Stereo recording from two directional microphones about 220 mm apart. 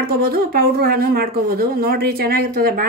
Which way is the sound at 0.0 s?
45° right (ahead or behind).